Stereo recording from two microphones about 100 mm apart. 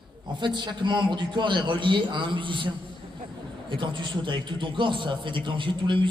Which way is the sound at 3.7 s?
50° right (ahead or behind).